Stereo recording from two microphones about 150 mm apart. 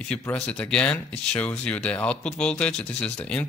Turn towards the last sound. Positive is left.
turn(degrees=5)  # may be behind; listen again after turning